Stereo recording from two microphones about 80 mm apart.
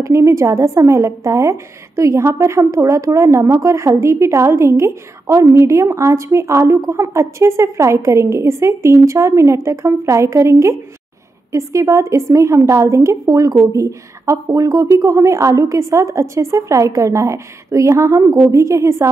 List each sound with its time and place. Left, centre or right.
0.0 s a woman's voice: right